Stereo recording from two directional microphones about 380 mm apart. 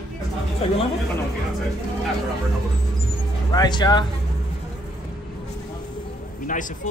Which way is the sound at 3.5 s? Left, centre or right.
Centre.